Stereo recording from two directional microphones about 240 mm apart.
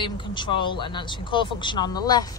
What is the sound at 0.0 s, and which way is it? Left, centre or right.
Speech, centre.